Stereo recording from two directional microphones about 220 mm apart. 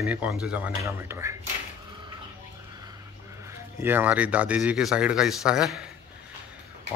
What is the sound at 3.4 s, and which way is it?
Speech, 10° right (ahead or behind).